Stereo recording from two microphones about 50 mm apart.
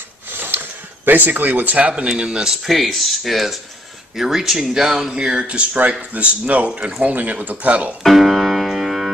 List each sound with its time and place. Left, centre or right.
0.3 s a sound: right
2.0 s speech: centre
8.0 s music: centre